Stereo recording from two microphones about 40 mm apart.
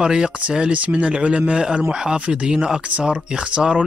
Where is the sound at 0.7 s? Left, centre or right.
Right.